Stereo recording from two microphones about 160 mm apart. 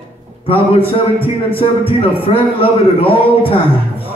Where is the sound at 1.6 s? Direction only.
35° left (ahead or behind).